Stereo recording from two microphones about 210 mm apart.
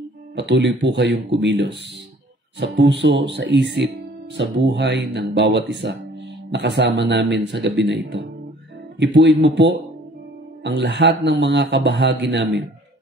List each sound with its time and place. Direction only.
0.4 s a man's voice: 60° right (ahead or behind)